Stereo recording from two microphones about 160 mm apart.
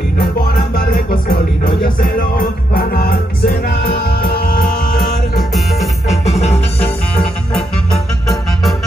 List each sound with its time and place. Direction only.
1.8 s music: 60° left (ahead or behind); by 4.6 s 90° left
6.0 s music: 45° left (ahead or behind)